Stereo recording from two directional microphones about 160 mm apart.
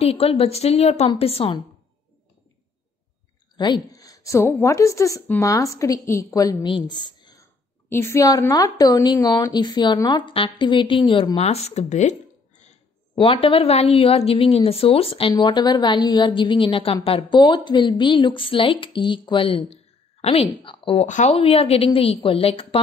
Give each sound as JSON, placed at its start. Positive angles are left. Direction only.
{"t": 0.0, "sound": "a woman's voice", "side_deg": 40}
{"t": 3.5, "sound": "a woman's voice", "side_deg": 30}
{"t": 6.7, "sound": "a sound", "side_deg": 30}
{"t": 7.9, "sound": "a woman's voice", "side_deg": 15}
{"t": 13.2, "sound": "a woman's voice", "side_deg": 35}
{"t": 21.1, "sound": "speech", "side_deg": 50}
{"t": 21.4, "sound": "a woman's voice", "side_deg": 40}